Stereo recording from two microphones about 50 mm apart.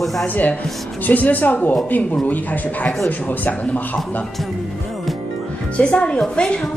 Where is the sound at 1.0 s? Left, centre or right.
Left.